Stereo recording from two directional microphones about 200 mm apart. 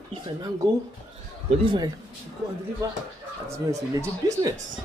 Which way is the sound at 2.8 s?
15° right (ahead or behind).